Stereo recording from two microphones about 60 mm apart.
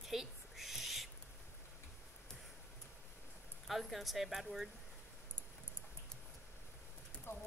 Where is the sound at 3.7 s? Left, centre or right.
Centre.